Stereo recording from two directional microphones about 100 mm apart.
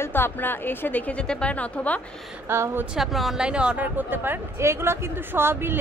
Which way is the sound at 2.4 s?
25° right (ahead or behind).